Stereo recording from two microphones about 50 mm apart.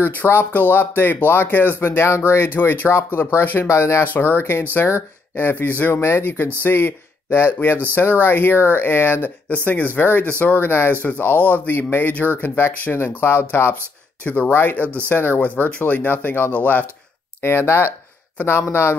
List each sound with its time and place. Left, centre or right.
0.3 s speech: left
3.6 s speech: left
4.0 s speech: left
5.3 s speech: left
9.5 s speech: left
14.2 s speech: left
14.5 s speech: left
17.4 s speech: left
18.6 s speech: left